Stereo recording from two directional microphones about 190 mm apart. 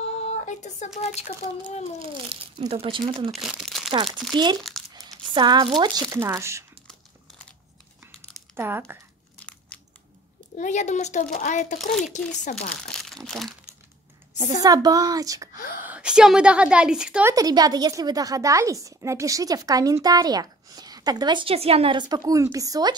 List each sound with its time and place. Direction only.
0.2 s a sound: 35° left (ahead or behind)
2.0 s speech: 30° right (ahead or behind)
3.3 s crumpling: centre (ahead or behind)
3.9 s speech: 25° right (ahead or behind)
4.6 s crumpling: centre (ahead or behind)
5.3 s speech: 25° right (ahead or behind)
8.5 s speech: 10° right (ahead or behind)
10.6 s a child's voice: 40° left (ahead or behind)
12.8 s speech: centre (ahead or behind)
14.4 s speech: 20° right (ahead or behind)
15.8 s a woman's voice: 5° right (ahead or behind)
17.3 s speech: 20° right (ahead or behind)